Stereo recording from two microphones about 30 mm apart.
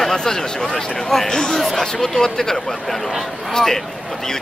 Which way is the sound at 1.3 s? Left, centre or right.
Left.